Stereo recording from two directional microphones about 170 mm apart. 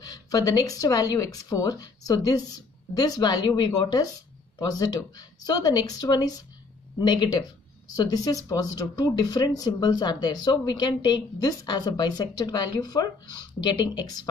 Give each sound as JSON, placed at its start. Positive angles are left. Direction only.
{"t": 0.0, "sound": "speech", "side_deg": 20}